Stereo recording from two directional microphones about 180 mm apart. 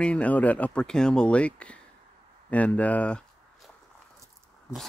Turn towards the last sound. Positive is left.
turn(degrees=5)  # may be behind; listen again after turning